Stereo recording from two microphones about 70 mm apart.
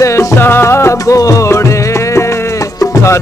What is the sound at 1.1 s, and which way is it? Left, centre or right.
Music, left.